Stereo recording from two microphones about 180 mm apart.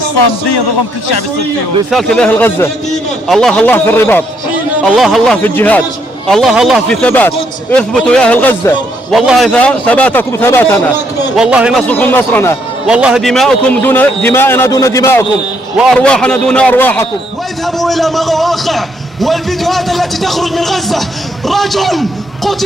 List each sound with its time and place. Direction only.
1.9 s speech: centre (ahead or behind)
4.8 s a man's voice: centre (ahead or behind)
6.2 s a man's voice: centre (ahead or behind)
9.1 s speech: centre (ahead or behind)
11.3 s a man's voice: 5° right (ahead or behind)
11.9 s speech: 10° left (ahead or behind)
12.8 s speech: 5° right (ahead or behind); by 15.2 s 15° left (ahead or behind)
15.8 s a man's voice: 5° left (ahead or behind)